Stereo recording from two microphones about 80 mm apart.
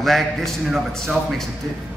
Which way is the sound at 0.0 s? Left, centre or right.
Centre.